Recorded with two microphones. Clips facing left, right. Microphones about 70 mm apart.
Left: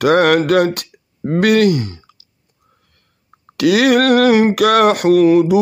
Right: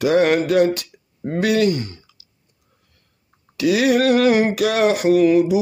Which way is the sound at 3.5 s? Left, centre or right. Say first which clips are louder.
Left 4 dB; left.